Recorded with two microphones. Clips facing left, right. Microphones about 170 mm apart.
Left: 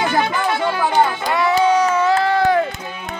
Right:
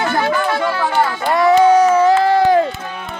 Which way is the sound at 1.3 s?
45° right (ahead or behind).